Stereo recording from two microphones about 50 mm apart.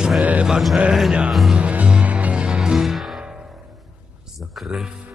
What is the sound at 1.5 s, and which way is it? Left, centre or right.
Music, right.